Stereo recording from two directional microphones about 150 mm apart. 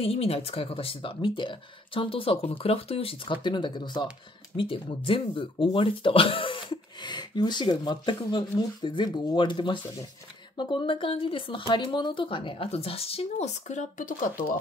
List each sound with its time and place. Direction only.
0.0 s speech: 40° left (ahead or behind); by 14.3 s 60° left (ahead or behind)